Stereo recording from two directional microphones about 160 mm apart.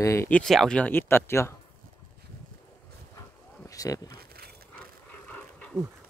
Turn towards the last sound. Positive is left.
turn(degrees=10)  # may be behind; listen again after turning